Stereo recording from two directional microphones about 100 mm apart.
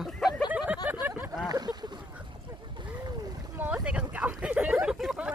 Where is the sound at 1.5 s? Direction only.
40° right (ahead or behind).